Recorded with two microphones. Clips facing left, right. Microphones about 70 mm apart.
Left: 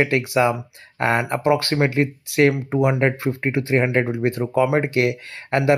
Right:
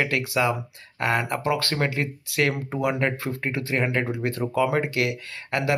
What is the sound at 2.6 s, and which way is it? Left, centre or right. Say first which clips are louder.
Speech: left 6 dB; centre.